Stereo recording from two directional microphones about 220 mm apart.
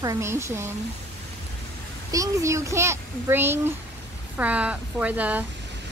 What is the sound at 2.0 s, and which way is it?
A child's voice, 15° right (ahead or behind).